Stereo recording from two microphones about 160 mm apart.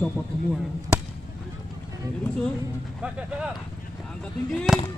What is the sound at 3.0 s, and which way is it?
A man's voice, 5° right (ahead or behind).